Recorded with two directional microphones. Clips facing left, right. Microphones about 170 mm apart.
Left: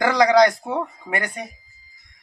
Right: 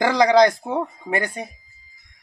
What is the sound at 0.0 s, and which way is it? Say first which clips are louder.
Speech: even; 25° right (ahead or behind).